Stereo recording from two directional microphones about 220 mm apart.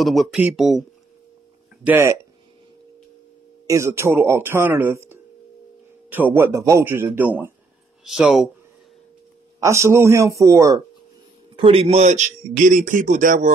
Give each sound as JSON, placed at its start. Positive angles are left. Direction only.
{"t": 0.0, "sound": "speech", "side_deg": 0}
{"t": 1.9, "sound": "speech", "side_deg": -10}
{"t": 3.6, "sound": "speech", "side_deg": -10}
{"t": 9.6, "sound": "speech", "side_deg": -15}
{"t": 11.5, "sound": "speech", "side_deg": -25}